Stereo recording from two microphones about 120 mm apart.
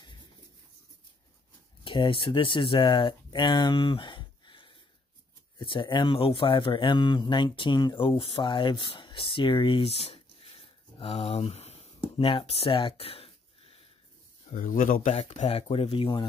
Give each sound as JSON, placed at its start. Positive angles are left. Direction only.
{"t": 1.9, "sound": "speech", "side_deg": 45}
{"t": 14.5, "sound": "speech", "side_deg": 90}